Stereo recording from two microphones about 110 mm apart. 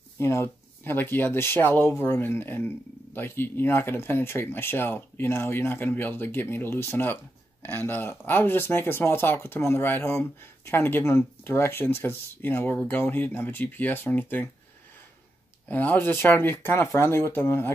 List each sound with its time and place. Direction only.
0.2 s speech: 25° left (ahead or behind)
15.7 s speech: 15° left (ahead or behind)